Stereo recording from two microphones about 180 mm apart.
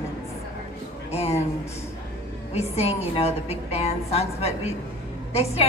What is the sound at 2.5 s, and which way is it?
A woman's voice, 35° left (ahead or behind).